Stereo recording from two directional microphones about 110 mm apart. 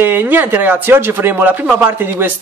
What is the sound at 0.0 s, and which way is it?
Speech, 20° right (ahead or behind).